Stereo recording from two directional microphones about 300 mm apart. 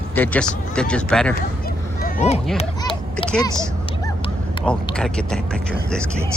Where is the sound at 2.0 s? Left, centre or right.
Left.